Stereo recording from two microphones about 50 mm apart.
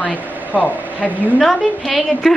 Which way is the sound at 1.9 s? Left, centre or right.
Left.